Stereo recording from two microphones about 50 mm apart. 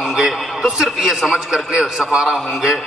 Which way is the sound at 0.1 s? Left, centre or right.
Centre.